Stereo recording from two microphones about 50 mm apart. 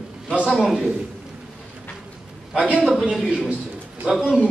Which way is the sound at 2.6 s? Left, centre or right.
Centre.